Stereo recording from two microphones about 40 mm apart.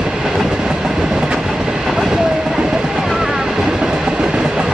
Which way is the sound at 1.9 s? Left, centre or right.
Centre.